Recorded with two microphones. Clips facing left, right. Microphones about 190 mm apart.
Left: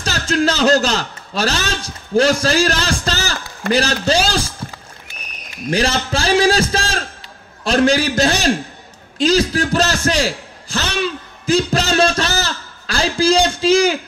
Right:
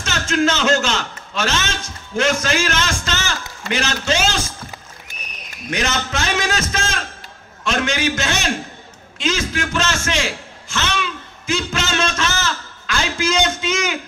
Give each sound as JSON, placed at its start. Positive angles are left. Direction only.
{"t": 0.0, "sound": "a man's voice", "side_deg": 35}
{"t": 5.7, "sound": "a man's voice", "side_deg": 30}